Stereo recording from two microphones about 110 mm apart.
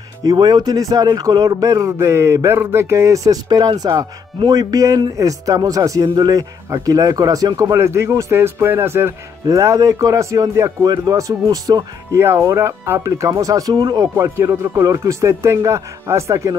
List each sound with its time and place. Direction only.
0.2 s speech: 35° right (ahead or behind)
14.1 s speech: 25° right (ahead or behind)